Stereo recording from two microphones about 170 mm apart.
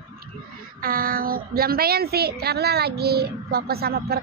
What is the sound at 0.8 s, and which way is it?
A woman's voice, 60° right (ahead or behind).